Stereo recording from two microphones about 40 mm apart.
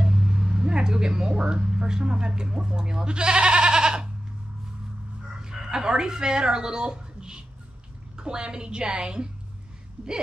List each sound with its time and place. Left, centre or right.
0.0 s speech: right
5.4 s a woman's voice: centre